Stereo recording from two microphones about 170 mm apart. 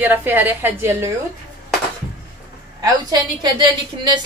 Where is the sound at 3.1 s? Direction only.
25° right (ahead or behind).